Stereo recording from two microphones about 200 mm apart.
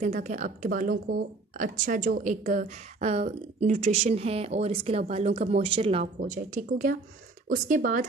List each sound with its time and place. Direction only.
0.0 s speech: 40° right (ahead or behind)